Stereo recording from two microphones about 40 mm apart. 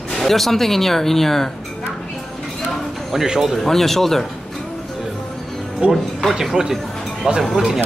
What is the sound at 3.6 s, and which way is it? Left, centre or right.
Speech, centre.